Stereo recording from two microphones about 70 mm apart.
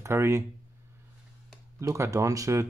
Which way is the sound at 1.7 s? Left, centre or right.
Right.